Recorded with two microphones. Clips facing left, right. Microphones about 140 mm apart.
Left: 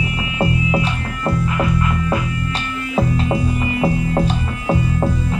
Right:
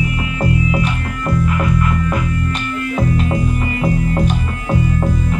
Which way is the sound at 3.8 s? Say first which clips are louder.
Even; 25° left (ahead or behind).